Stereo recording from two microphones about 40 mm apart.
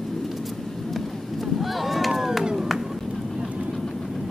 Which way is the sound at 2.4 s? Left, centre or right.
Centre.